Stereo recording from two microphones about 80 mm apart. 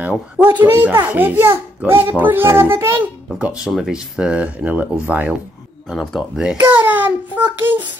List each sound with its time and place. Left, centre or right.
0.4 s speech: right
3.3 s speech: centre
5.9 s speech: centre
6.7 s a sound: right
7.5 s speech: right